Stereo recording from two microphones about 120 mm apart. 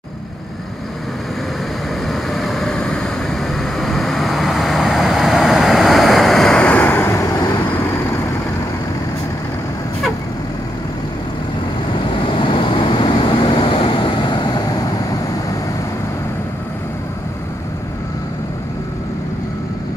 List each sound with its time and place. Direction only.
2.3 s vehicle: centre (ahead or behind); by 7.4 s 20° left (ahead or behind)
12.3 s vehicle: 45° left (ahead or behind)